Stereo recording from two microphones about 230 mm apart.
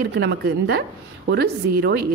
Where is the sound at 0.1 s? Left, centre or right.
Right.